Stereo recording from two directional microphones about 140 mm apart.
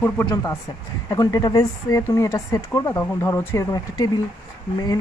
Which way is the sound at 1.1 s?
25° left (ahead or behind).